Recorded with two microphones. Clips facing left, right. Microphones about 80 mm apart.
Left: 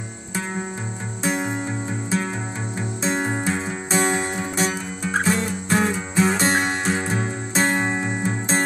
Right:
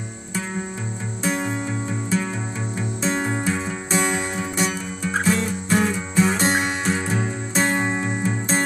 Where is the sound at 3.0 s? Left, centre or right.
Left.